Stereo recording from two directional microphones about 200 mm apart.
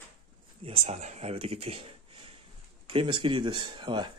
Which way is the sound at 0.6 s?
30° right (ahead or behind).